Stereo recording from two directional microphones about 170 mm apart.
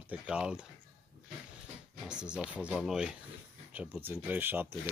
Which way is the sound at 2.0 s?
5° right (ahead or behind).